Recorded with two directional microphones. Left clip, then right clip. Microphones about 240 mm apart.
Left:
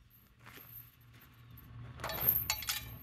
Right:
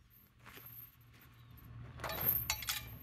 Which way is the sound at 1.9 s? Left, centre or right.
Centre.